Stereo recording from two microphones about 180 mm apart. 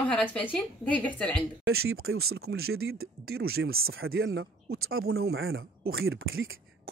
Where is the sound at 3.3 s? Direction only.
60° right (ahead or behind).